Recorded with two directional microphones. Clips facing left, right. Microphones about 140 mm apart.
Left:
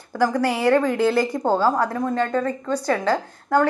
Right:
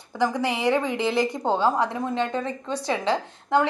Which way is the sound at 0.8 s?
50° left (ahead or behind).